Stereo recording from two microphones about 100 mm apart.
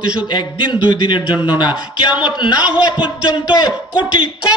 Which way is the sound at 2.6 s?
10° right (ahead or behind).